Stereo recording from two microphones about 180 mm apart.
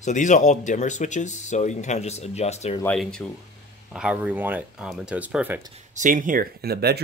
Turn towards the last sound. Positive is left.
turn(degrees=-60)  # may be behind; listen again after turning